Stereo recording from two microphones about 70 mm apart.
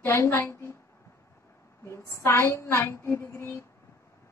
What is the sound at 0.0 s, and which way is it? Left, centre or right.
Child singing, left.